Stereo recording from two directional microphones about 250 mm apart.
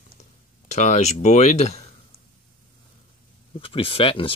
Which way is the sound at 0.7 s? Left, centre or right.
Left.